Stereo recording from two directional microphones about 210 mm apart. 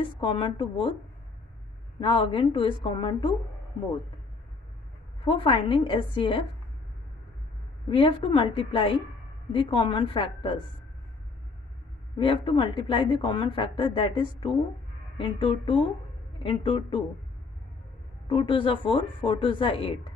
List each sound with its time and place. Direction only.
0.0 s a woman's voice: 25° left (ahead or behind)
2.0 s a woman's voice: 25° left (ahead or behind)
5.2 s a woman's voice: 25° left (ahead or behind)
7.9 s a woman's voice: 25° left (ahead or behind)
12.2 s a woman's voice: 25° left (ahead or behind)
18.3 s a woman's voice: 25° left (ahead or behind)